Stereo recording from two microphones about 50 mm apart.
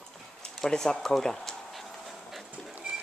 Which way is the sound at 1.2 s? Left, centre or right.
Centre.